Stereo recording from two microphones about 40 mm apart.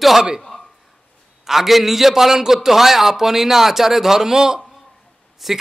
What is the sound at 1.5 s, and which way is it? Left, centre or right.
A man's voice, centre.